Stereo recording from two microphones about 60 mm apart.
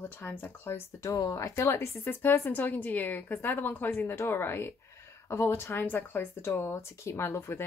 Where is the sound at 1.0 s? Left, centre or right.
Left.